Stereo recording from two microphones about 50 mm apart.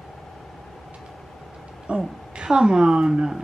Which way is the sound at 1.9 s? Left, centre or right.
Right.